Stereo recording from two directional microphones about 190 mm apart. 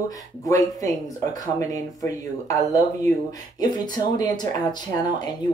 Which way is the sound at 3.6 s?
20° left (ahead or behind).